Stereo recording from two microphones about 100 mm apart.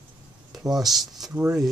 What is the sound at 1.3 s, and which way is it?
Speech, 20° right (ahead or behind).